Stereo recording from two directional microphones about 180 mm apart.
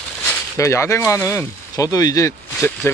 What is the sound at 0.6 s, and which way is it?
Speech, 15° left (ahead or behind).